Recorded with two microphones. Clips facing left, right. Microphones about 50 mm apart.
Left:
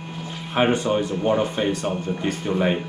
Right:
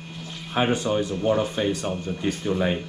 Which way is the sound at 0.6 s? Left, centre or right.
Left.